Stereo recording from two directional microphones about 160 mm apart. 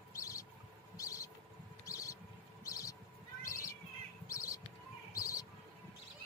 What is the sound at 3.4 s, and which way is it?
Bird, 20° left (ahead or behind).